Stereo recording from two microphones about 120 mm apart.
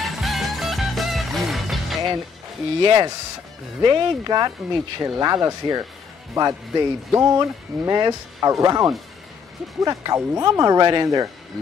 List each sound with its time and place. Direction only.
0.0 s music: centre (ahead or behind)
2.8 s speech: 40° right (ahead or behind)